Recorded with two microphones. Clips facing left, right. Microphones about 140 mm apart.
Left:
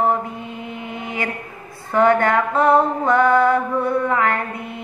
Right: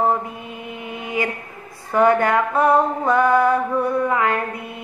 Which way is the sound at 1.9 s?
10° right (ahead or behind).